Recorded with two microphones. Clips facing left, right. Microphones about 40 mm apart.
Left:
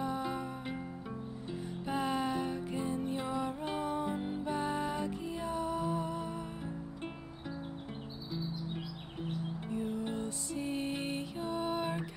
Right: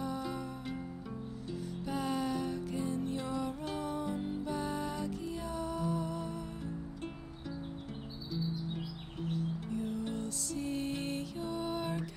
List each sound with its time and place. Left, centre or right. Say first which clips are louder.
0.0 s music: left 2 dB; left
8.3 s music: right 2 dB; left